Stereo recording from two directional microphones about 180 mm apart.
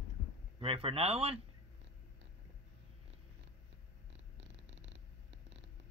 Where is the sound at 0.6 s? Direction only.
30° right (ahead or behind).